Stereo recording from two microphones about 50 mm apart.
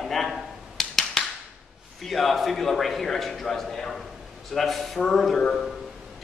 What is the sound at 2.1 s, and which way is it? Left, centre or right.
A man's voice, centre.